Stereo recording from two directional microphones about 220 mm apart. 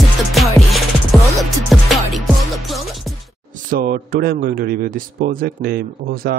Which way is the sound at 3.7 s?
40° right (ahead or behind).